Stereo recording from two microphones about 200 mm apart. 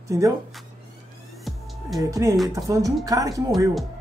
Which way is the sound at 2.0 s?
15° right (ahead or behind).